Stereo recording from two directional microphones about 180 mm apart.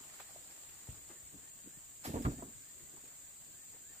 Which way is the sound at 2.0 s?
40° right (ahead or behind).